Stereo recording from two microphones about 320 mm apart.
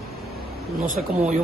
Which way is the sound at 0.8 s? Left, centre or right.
Right.